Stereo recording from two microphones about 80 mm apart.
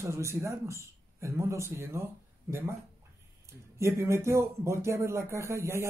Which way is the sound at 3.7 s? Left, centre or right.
Right.